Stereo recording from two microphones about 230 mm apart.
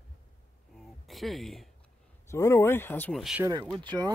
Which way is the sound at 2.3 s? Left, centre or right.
Centre.